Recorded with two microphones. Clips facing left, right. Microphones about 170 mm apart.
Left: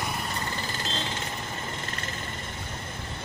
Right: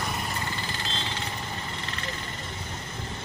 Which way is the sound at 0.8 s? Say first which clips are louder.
Left 2 dB; 45° left (ahead or behind).